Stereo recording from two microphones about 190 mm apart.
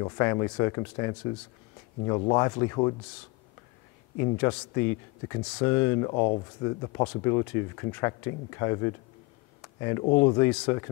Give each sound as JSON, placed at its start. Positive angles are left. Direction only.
{"t": 0.0, "sound": "speech", "side_deg": 15}
{"t": 4.2, "sound": "speech", "side_deg": 15}